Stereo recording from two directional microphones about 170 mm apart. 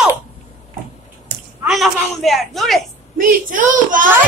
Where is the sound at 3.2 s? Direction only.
55° right (ahead or behind).